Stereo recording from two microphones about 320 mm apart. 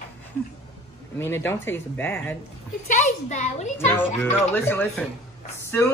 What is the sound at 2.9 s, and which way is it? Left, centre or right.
Speech, left.